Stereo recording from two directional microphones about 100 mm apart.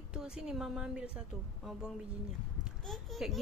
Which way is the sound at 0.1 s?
5° right (ahead or behind).